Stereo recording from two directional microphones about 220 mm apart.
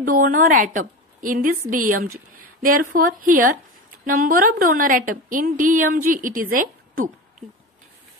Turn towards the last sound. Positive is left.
turn(degrees=-40)  # may be behind; listen again after turning